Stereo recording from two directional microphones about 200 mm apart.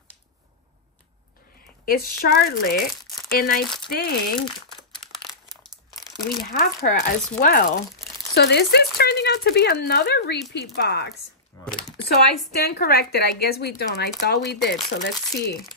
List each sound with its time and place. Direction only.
1.9 s speech: 50° left (ahead or behind)
5.1 s crumpling: centre (ahead or behind)
6.2 s speech: 50° left (ahead or behind)
8.4 s speech: 55° left (ahead or behind)
12.6 s speech: 50° left (ahead or behind)